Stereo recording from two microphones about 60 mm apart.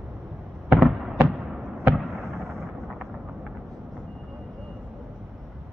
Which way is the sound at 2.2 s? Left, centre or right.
Right.